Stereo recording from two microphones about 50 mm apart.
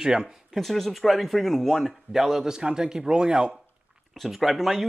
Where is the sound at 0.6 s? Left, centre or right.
Centre.